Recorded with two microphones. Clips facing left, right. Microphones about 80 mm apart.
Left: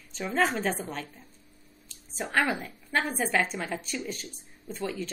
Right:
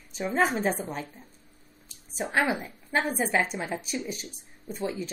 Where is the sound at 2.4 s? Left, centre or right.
Centre.